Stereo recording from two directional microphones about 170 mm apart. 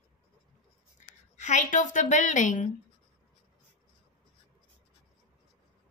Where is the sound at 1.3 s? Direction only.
45° left (ahead or behind).